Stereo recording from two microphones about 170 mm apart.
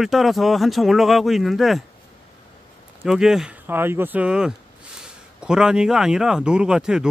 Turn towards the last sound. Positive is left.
turn(degrees=-5)  # may be behind; listen again after turning